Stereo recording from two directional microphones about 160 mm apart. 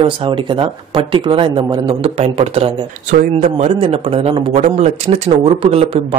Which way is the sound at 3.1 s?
55° right (ahead or behind).